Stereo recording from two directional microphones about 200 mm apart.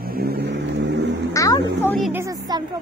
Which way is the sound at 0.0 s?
50° right (ahead or behind).